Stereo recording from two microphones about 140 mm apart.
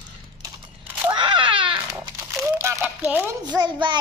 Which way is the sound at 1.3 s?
35° right (ahead or behind).